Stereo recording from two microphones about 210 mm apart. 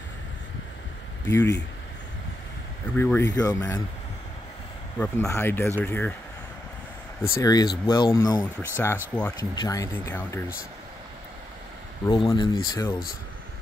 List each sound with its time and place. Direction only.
1.2 s speech: 15° left (ahead or behind)
3.0 s speech: 15° left (ahead or behind)
4.9 s speech: 10° left (ahead or behind)
7.4 s speech: 20° left (ahead or behind)
12.1 s speech: 20° left (ahead or behind)